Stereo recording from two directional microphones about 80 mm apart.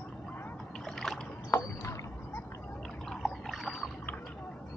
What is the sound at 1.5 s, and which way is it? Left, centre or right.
Rowboat, left.